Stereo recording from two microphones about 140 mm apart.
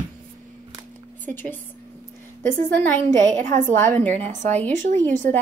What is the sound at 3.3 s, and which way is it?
Speech, 60° right (ahead or behind).